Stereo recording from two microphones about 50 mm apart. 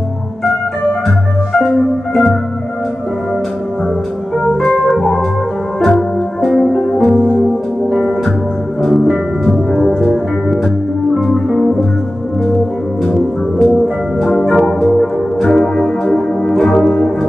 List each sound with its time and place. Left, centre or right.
4.6 s music: centre
9.0 s music: centre
13.0 s music: centre